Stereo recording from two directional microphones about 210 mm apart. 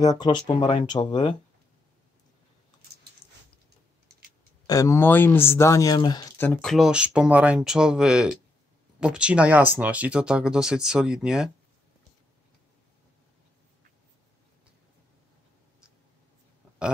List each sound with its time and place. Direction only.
0.0 s speech: 20° left (ahead or behind)
4.6 s speech: 15° left (ahead or behind); by 11.5 s 5° right (ahead or behind)